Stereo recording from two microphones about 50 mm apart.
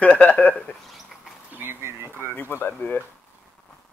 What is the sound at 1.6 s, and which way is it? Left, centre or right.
Speech, right.